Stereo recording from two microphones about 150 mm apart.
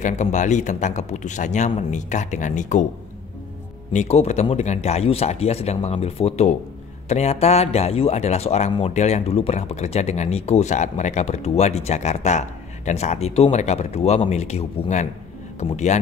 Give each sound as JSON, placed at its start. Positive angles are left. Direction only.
{"t": 0.0, "sound": "speech", "side_deg": 55}
{"t": 3.9, "sound": "speech", "side_deg": 50}